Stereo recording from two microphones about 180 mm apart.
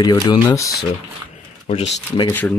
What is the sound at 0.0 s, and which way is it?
Speech, 25° left (ahead or behind).